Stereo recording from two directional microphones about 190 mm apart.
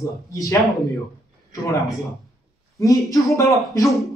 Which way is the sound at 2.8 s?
20° left (ahead or behind).